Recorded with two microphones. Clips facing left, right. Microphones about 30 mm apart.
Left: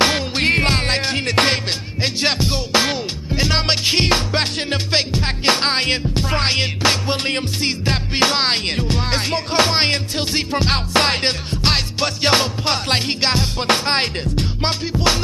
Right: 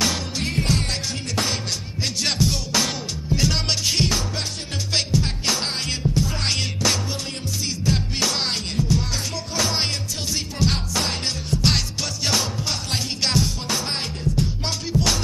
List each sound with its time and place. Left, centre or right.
0.4 s music: left
2.0 s music: left
4.9 s music: left
6.4 s music: left
7.1 s music: left
11.6 s music: left
13.2 s music: left
13.6 s music: left
14.6 s music: left